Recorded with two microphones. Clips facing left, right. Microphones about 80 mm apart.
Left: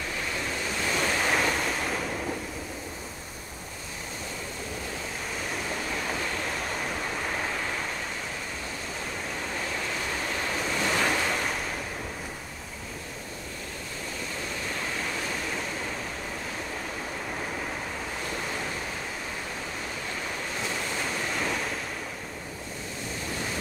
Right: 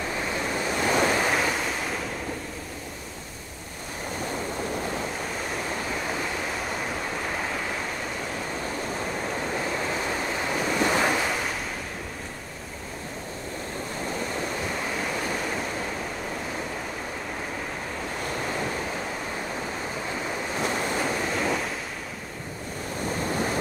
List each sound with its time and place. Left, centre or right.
0.7 s waves: right
1.0 s waves: centre
6.7 s waves: centre
10.4 s waves: centre
20.6 s waves: right
21.0 s waves: centre
23.0 s waves: right